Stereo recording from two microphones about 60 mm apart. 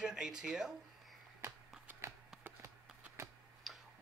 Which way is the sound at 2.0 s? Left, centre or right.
Right.